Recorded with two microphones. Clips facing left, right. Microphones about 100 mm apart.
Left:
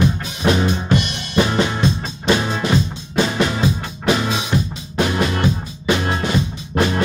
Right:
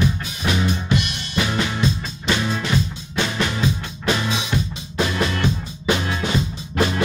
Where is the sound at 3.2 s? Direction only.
30° left (ahead or behind).